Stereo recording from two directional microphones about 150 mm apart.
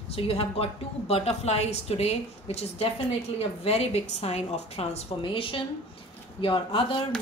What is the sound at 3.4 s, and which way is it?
A woman's voice, 45° left (ahead or behind).